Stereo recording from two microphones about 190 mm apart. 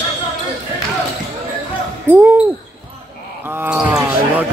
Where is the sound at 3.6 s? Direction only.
5° right (ahead or behind).